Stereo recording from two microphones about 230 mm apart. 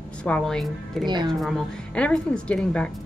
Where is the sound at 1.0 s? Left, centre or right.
Centre.